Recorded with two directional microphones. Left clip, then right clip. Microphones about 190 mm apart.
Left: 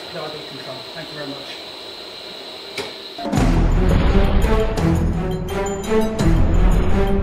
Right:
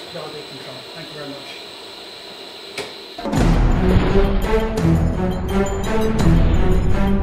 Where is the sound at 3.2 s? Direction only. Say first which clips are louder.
Even; 20° left (ahead or behind).